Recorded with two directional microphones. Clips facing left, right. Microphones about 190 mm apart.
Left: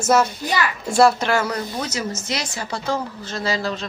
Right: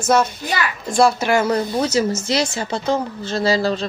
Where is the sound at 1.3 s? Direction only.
20° right (ahead or behind).